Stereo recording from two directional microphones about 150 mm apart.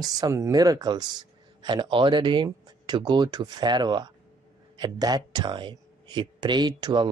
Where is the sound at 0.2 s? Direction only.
25° right (ahead or behind).